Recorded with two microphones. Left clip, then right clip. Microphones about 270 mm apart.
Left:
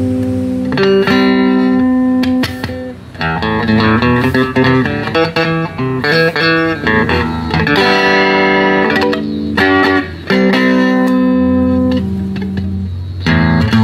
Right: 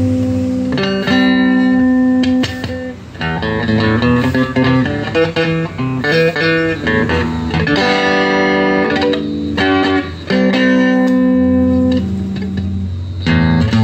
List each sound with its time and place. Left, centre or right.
0.7 s music: left
3.4 s music: left
13.3 s music: left